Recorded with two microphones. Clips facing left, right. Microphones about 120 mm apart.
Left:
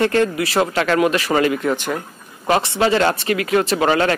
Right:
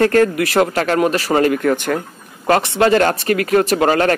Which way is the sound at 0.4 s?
50° right (ahead or behind).